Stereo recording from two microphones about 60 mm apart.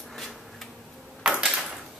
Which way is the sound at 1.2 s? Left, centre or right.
Centre.